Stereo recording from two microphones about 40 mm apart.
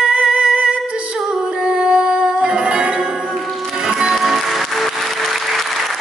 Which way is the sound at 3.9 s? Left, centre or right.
Centre.